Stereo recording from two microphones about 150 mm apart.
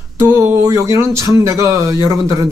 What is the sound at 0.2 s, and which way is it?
Speech, 15° right (ahead or behind).